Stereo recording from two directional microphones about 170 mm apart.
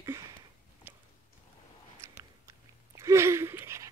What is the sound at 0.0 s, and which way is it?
Sniff, 20° right (ahead or behind).